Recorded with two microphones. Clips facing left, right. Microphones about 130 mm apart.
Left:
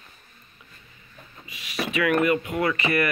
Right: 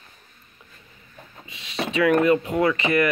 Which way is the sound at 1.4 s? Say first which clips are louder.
Right 1 dB; 25° right (ahead or behind).